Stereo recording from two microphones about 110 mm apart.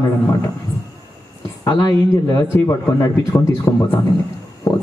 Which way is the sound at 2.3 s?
35° left (ahead or behind).